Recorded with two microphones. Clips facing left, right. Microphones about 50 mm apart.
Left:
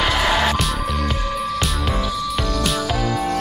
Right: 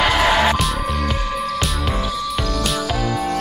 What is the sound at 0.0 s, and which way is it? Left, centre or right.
Music, centre.